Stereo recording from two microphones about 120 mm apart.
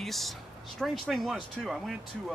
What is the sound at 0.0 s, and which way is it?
Speech, centre (ahead or behind).